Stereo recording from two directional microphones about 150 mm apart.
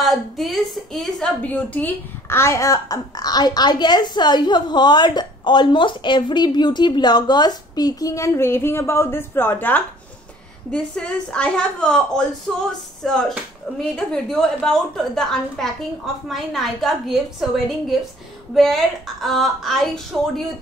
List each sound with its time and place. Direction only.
0.0 s a woman's voice: centre (ahead or behind)